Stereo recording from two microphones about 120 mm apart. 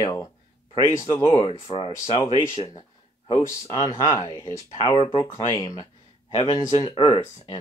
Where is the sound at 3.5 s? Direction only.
25° left (ahead or behind).